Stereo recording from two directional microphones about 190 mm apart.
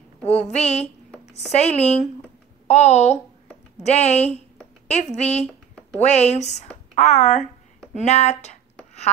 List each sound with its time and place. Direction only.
0.3 s a woman's voice: 35° left (ahead or behind)
4.2 s a sound: 10° left (ahead or behind)
4.8 s a woman's voice: 35° left (ahead or behind)